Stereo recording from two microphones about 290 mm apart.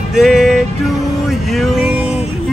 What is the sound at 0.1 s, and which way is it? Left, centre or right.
Music, centre.